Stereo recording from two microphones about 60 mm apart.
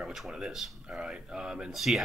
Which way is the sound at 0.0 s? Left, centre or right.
Centre.